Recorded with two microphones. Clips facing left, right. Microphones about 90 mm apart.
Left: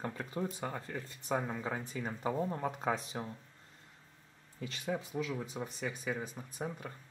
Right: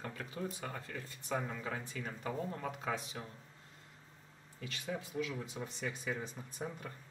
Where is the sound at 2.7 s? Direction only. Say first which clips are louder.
Left 4 dB; 35° left (ahead or behind).